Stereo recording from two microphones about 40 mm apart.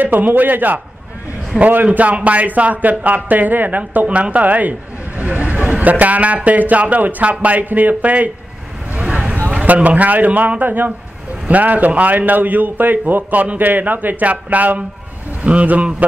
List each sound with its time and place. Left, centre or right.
0.0 s a man's voice: right
1.9 s a man's voice: right
4.1 s a man's voice: right
9.0 s a sound: right
9.7 s a man's voice: right